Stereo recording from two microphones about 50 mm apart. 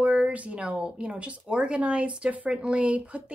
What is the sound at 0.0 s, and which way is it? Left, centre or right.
Speech, right.